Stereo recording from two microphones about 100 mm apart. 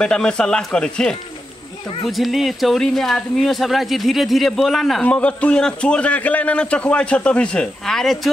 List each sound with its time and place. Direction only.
0.0 s a man's voice: 10° left (ahead or behind)
5.0 s a man's voice: 15° left (ahead or behind)